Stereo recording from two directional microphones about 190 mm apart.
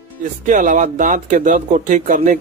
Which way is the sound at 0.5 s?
40° right (ahead or behind).